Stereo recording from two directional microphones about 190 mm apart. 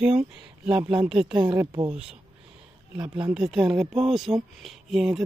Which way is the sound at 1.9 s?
5° right (ahead or behind).